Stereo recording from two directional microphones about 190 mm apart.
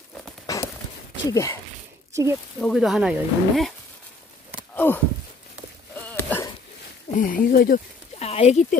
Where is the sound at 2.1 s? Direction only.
15° right (ahead or behind).